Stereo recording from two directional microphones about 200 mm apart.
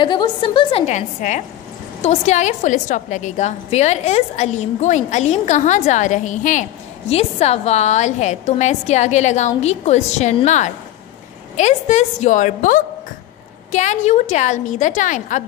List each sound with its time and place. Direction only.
0.0 s a woman's voice: 25° left (ahead or behind); by 15.4 s 40° left (ahead or behind)